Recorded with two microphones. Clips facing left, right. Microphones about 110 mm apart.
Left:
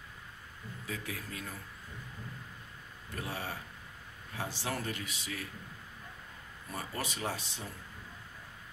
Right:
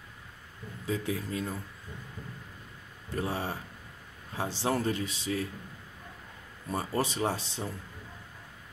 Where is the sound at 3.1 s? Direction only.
30° right (ahead or behind).